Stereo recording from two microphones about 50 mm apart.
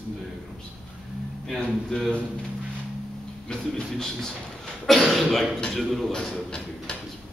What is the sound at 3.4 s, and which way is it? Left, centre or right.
Speech, centre.